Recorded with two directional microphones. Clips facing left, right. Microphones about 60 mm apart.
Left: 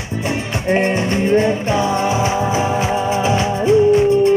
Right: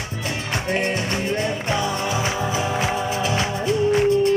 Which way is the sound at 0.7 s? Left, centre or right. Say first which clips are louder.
Left 8 dB; left.